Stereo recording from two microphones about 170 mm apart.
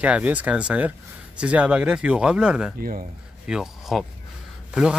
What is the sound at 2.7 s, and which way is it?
Speech, 55° right (ahead or behind).